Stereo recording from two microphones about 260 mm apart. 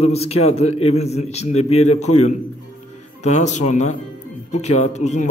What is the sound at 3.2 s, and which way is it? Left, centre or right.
A man's voice, left.